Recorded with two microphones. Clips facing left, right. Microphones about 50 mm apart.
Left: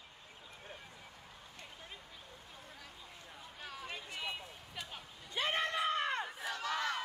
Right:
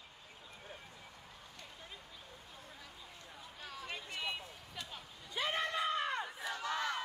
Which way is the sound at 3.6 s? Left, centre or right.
Centre.